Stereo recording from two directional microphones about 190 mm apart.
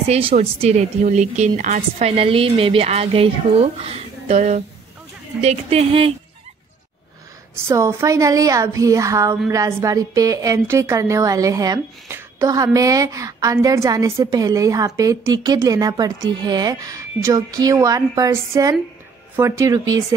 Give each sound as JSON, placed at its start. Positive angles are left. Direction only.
{"t": 0.1, "sound": "a woman's voice", "side_deg": -30}
{"t": 7.6, "sound": "a woman's voice", "side_deg": -15}